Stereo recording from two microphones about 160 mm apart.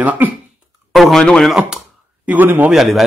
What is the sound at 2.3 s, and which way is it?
Speech, 10° right (ahead or behind).